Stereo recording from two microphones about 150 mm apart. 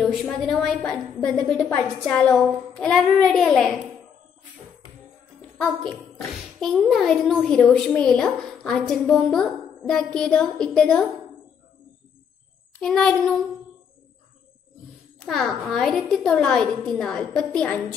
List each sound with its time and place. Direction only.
0.0 s a child's voice: centre (ahead or behind)
5.6 s a child's voice: 5° left (ahead or behind)
12.8 s a child's voice: 5° left (ahead or behind)
15.1 s a child's voice: centre (ahead or behind)